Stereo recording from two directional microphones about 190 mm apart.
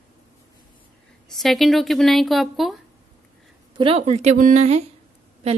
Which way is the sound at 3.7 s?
30° right (ahead or behind).